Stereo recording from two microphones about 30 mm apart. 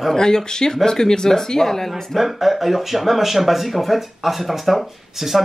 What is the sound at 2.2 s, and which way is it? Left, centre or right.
Speech, centre.